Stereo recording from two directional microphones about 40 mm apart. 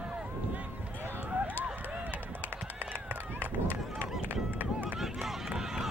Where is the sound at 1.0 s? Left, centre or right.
Right.